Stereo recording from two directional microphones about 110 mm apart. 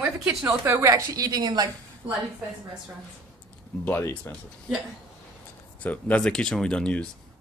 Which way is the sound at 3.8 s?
20° left (ahead or behind).